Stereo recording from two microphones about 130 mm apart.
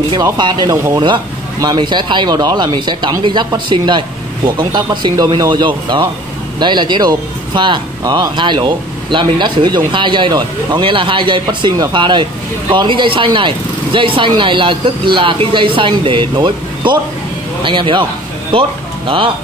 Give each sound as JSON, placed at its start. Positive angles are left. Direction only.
{"t": 0.1, "sound": "speech", "side_deg": -35}